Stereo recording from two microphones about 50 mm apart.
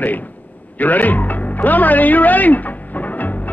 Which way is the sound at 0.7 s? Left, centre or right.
Left.